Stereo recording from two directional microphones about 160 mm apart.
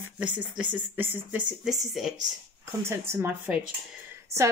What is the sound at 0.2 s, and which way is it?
A woman's voice, 10° right (ahead or behind).